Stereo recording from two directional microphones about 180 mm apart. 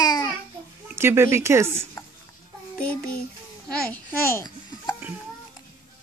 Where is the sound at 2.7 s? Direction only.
5° left (ahead or behind).